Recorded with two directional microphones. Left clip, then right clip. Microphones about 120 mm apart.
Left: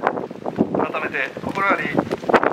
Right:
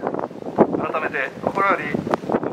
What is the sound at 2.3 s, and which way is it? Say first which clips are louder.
Wind noise: left 9 dB; 45° left (ahead or behind).